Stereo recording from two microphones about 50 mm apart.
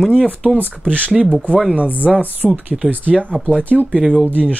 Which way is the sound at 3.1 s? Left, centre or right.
Centre.